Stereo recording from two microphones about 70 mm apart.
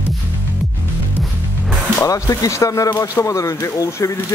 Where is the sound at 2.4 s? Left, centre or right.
Left.